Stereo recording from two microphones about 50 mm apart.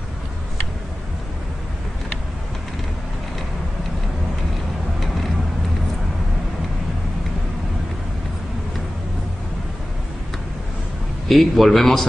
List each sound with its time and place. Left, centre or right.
11.2 s a man's voice: centre